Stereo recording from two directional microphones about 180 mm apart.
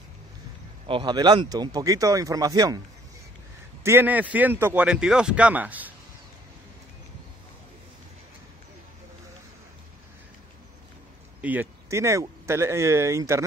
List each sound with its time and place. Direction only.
0.8 s speech: 25° right (ahead or behind)
3.8 s speech: 10° right (ahead or behind)
11.4 s speech: 10° right (ahead or behind)